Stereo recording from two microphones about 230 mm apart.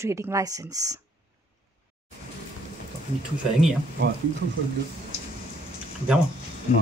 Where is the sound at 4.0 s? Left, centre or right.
Right.